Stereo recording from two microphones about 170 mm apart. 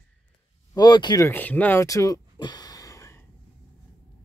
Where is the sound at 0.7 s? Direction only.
25° left (ahead or behind).